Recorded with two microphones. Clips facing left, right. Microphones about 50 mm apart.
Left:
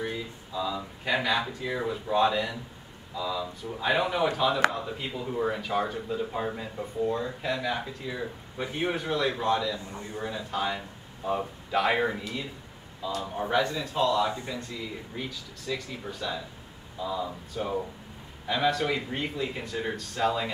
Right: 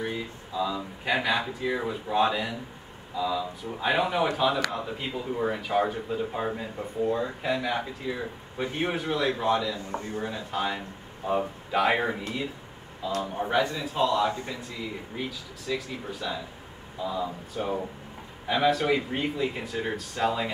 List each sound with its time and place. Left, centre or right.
0.0 s speech: centre